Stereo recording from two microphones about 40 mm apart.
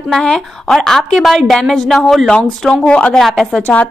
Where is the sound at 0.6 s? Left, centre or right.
Centre.